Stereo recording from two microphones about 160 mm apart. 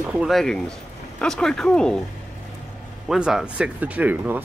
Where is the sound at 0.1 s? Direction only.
5° right (ahead or behind).